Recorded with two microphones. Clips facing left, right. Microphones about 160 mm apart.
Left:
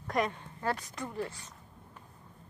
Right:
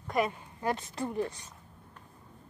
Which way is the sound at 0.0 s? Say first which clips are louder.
Right 2 dB; 5° right (ahead or behind).